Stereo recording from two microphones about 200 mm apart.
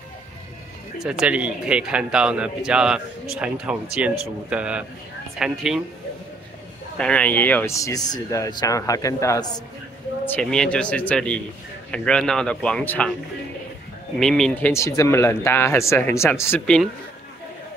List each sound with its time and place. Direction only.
1.2 s a man's voice: 5° right (ahead or behind)
7.0 s speech: 5° left (ahead or behind)
10.2 s a man's voice: 5° left (ahead or behind)
14.1 s speech: centre (ahead or behind)